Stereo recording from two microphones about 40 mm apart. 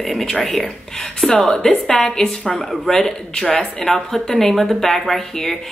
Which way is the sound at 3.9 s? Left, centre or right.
Centre.